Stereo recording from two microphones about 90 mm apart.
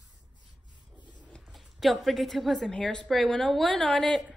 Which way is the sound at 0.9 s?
55° left (ahead or behind).